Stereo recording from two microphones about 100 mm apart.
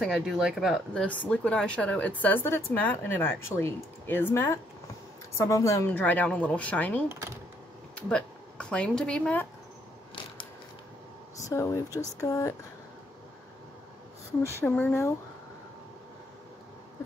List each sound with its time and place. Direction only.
0.0 s speech: centre (ahead or behind)
0.9 s a woman's voice: 15° left (ahead or behind); by 5.9 s 30° left (ahead or behind)
5.9 s speech: 15° left (ahead or behind)
11.4 s speech: 30° left (ahead or behind)
14.4 s a woman's voice: 25° left (ahead or behind)